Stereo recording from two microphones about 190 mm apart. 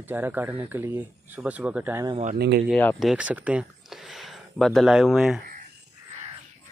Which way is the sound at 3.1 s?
5° right (ahead or behind).